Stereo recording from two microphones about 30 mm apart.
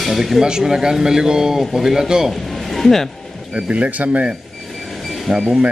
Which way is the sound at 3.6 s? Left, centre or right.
Right.